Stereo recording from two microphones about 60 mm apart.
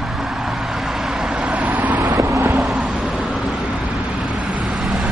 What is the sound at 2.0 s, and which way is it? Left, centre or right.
Vehicle, right.